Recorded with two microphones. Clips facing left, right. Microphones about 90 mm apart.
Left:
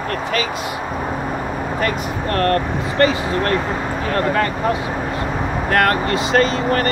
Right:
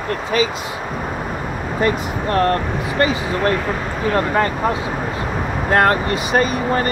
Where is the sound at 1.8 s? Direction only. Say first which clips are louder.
Right 5 dB; 15° right (ahead or behind).